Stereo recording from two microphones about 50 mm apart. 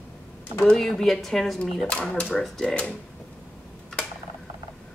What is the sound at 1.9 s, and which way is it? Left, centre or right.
Speech, left.